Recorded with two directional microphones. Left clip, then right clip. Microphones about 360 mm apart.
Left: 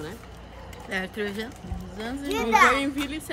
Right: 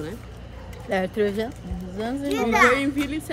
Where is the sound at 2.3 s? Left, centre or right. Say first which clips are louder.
Right 1 dB; centre.